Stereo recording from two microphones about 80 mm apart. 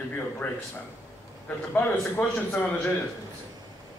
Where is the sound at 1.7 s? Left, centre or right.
Left.